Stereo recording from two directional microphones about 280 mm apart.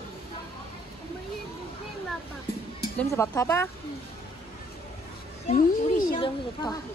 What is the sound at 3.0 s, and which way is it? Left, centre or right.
Speech, centre.